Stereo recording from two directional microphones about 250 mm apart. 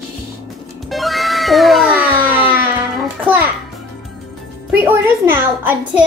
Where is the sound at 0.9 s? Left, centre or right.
Centre.